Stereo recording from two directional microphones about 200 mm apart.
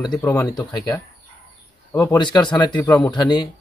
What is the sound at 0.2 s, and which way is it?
Speech, 15° left (ahead or behind).